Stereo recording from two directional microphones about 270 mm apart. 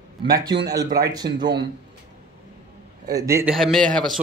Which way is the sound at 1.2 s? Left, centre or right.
Right.